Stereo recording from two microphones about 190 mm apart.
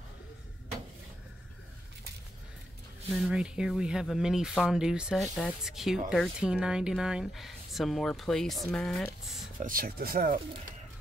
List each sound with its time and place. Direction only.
3.1 s speech: centre (ahead or behind)
9.6 s speech: 50° right (ahead or behind)